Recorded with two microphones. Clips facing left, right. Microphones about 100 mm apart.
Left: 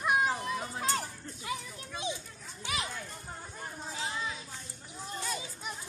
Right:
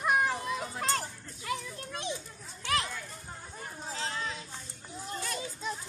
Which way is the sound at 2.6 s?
15° left (ahead or behind).